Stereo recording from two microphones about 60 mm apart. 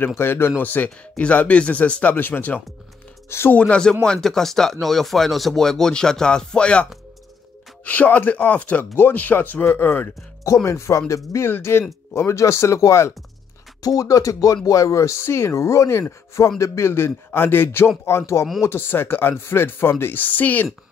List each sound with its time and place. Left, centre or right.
0.2 s speech: left
0.6 s speech: left
0.8 s speech: centre; by 2.6 s left
3.3 s speech: left
3.5 s speech: centre; by 10.0 s left
10.4 s speech: left
11.4 s speech: left
13.8 s speech: left